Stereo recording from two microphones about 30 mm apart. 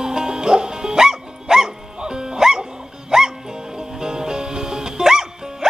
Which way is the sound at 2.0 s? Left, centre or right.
Right.